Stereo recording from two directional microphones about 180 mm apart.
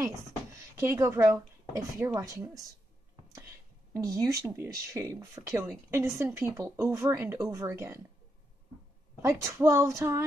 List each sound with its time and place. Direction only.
0.0 s a sound: 15° right (ahead or behind)
2.0 s speech: 20° right (ahead or behind)
3.9 s speech: 15° right (ahead or behind)
9.2 s speech: 15° right (ahead or behind)